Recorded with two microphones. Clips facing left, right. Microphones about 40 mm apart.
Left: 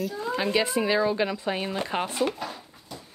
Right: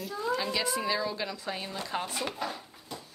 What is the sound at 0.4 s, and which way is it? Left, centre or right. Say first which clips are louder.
Speech: left 6 dB; left.